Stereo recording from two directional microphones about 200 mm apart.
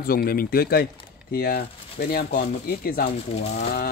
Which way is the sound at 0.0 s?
50° left (ahead or behind).